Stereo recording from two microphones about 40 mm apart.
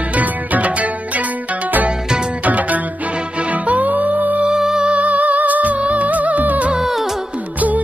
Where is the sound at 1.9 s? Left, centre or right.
Right.